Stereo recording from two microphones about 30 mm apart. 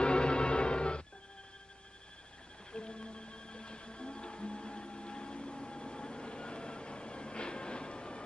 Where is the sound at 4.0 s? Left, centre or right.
Left.